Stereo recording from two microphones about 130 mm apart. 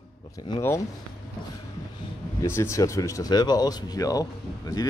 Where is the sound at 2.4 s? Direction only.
20° left (ahead or behind).